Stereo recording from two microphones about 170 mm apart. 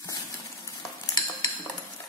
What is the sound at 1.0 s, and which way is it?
Cutlery, 20° left (ahead or behind).